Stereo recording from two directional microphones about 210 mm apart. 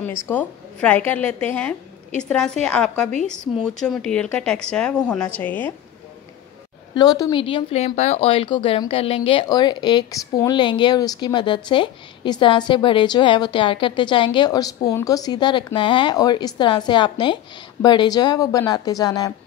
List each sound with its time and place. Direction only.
0.0 s a woman's voice: 10° left (ahead or behind)
7.0 s a woman's voice: 20° left (ahead or behind)